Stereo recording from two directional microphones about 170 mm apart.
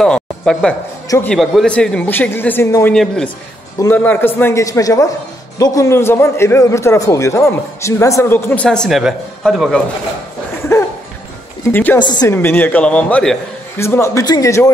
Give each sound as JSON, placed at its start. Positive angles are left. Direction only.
{"t": 0.0, "sound": "speech", "side_deg": 5}
{"t": 1.0, "sound": "a man's voice", "side_deg": 15}
{"t": 1.3, "sound": "a man's voice", "side_deg": 0}
{"t": 2.9, "sound": "a man's voice", "side_deg": 5}
{"t": 10.7, "sound": "a sound", "side_deg": 15}
{"t": 11.7, "sound": "a man's voice", "side_deg": 10}
{"t": 12.0, "sound": "a woman's voice", "side_deg": 25}
{"t": 12.4, "sound": "a man's voice", "side_deg": 10}